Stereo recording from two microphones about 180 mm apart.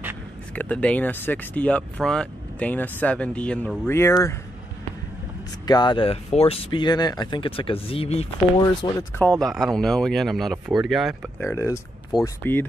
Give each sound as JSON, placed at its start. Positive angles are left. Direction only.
{"t": 0.6, "sound": "speech", "side_deg": 5}
{"t": 3.8, "sound": "speech", "side_deg": 15}
{"t": 5.7, "sound": "speech", "side_deg": 25}
{"t": 8.8, "sound": "speech", "side_deg": 15}
{"t": 9.4, "sound": "speech", "side_deg": 0}
{"t": 11.4, "sound": "speech", "side_deg": 15}
{"t": 12.1, "sound": "speech", "side_deg": 0}